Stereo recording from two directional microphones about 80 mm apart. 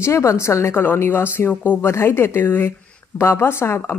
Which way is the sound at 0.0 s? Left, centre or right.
Left.